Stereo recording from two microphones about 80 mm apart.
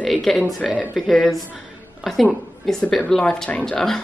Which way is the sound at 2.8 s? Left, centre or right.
Centre.